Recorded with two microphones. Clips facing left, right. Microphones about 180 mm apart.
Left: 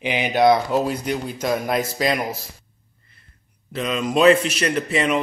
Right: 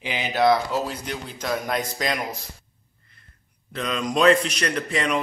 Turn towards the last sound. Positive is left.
turn(degrees=5)  # may be behind; listen again after turning